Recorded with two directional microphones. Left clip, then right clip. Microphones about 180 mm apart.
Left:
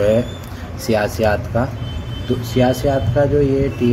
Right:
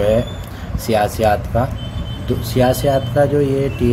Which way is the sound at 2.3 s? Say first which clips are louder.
Right 1 dB; 15° right (ahead or behind).